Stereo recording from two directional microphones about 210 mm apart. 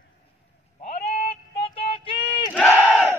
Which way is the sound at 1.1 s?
30° left (ahead or behind).